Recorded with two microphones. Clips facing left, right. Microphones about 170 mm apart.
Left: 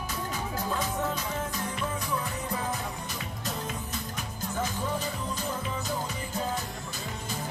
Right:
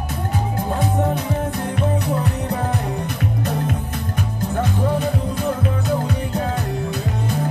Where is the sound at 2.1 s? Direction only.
65° right (ahead or behind).